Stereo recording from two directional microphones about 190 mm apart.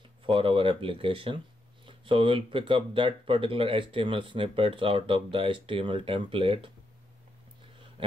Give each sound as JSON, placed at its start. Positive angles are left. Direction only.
{"t": 0.3, "sound": "speech", "side_deg": -30}